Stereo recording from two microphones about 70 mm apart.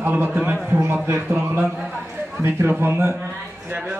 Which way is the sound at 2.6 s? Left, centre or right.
Right.